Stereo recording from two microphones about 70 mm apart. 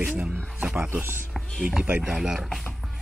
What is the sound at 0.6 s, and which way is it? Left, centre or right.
Wild animals, centre.